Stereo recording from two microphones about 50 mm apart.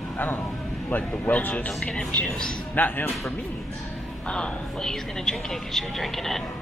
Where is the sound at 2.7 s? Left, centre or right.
Left.